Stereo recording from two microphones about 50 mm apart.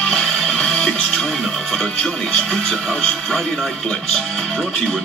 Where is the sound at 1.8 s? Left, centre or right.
Left.